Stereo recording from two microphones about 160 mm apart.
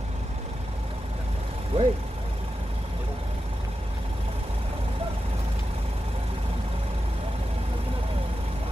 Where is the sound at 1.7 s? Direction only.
35° right (ahead or behind).